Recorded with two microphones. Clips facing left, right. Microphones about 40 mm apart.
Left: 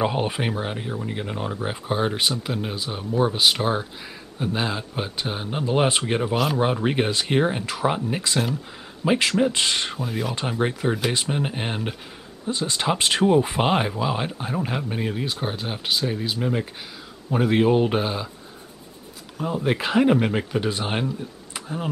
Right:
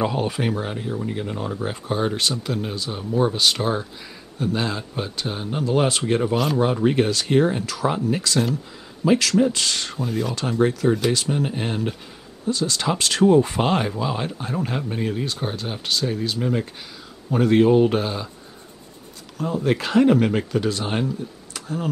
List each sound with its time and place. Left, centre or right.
0.0 s speech: left
6.3 s speech: centre
6.6 s speech: left
9.9 s speech: centre
10.6 s speech: left
19.3 s speech: centre
21.5 s a sound: centre